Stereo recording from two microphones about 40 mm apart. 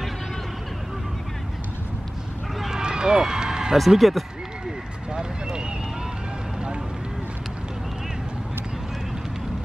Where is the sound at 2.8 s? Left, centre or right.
Centre.